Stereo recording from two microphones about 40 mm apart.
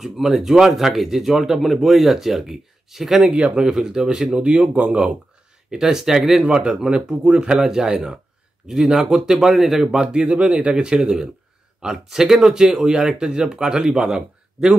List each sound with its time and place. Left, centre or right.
0.0 s a man's voice: centre
4.5 s speech: right
5.8 s a man's voice: centre
6.4 s a man's voice: right; by 9.9 s centre
10.4 s a man's voice: right